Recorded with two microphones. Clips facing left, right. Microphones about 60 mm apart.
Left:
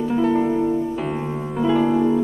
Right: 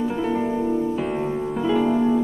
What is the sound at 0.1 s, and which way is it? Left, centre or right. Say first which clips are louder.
Music: left 5 dB; centre.